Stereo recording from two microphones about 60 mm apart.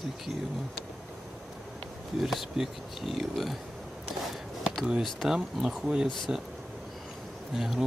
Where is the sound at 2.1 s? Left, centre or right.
Centre.